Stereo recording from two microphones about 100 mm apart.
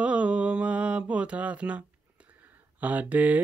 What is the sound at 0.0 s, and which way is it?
Mantra, 10° right (ahead or behind).